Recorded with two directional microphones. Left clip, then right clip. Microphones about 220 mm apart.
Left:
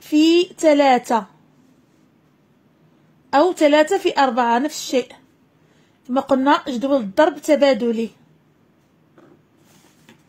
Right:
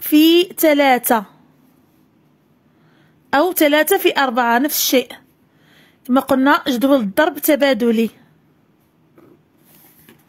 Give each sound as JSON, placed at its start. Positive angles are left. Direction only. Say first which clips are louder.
{"t": 0.0, "sound": "speech", "louder": "right 3 dB", "side_deg": -30}
{"t": 3.3, "sound": "speech", "louder": "even", "side_deg": -35}